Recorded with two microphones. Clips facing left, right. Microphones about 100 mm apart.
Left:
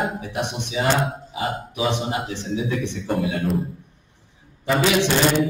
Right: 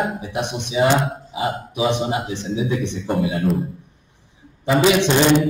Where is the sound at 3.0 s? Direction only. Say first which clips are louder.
Right 3 dB; centre (ahead or behind).